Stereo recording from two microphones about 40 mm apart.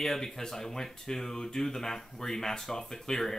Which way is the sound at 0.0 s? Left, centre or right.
Centre.